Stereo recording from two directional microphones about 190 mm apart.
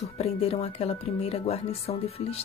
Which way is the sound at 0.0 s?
35° left (ahead or behind).